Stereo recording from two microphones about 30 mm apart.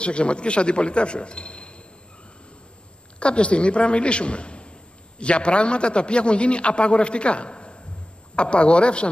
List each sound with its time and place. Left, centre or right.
0.0 s a man's voice: left
3.2 s a man's voice: left